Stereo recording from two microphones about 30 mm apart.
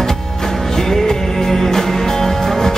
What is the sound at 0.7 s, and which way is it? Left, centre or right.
Music, centre.